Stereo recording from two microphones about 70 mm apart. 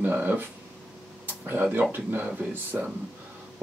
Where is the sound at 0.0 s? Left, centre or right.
Right.